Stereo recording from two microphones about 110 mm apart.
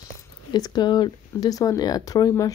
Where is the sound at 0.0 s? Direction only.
35° left (ahead or behind).